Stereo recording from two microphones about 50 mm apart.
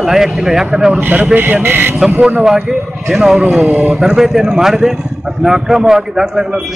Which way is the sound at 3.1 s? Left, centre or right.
Centre.